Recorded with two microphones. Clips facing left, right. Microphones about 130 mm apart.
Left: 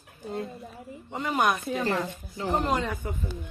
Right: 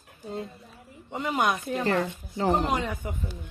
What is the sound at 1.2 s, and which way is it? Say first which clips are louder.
Speech: left 1 dB; 20° right (ahead or behind).